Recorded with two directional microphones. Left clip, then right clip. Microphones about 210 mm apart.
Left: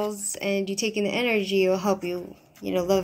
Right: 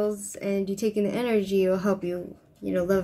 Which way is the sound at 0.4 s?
15° right (ahead or behind).